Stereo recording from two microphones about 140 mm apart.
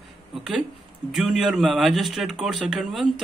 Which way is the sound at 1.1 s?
Centre (ahead or behind).